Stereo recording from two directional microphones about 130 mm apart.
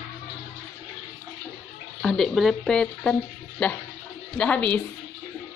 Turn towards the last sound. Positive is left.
turn(degrees=10)  # may be behind; listen again after turning